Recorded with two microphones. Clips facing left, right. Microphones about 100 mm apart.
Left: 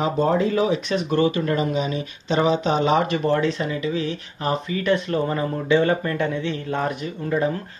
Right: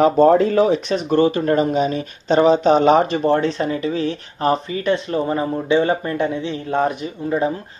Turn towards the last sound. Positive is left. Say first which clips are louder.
# right 2 dB
turn(degrees=-20)  # may be behind; listen again after turning